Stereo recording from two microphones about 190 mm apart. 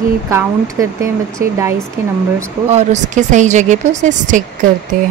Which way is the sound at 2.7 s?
40° right (ahead or behind).